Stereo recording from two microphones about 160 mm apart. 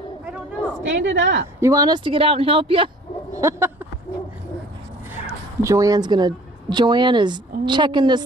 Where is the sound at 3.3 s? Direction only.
20° right (ahead or behind).